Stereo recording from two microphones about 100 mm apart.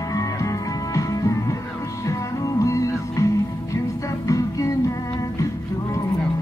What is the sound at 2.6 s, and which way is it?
Music, 30° left (ahead or behind).